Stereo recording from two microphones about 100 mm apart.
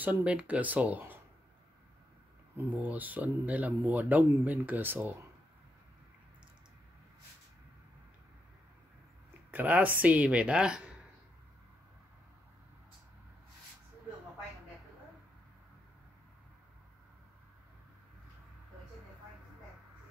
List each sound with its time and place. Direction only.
0.0 s speech: 15° right (ahead or behind)
2.5 s speech: 15° right (ahead or behind)
9.5 s speech: 15° right (ahead or behind)